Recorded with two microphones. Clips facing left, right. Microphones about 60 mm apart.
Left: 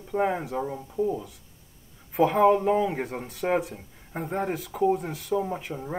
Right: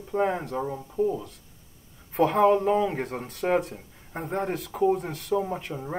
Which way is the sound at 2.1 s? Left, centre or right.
Centre.